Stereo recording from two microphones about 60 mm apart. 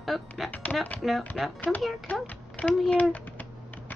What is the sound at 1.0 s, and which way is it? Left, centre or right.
Speech, centre.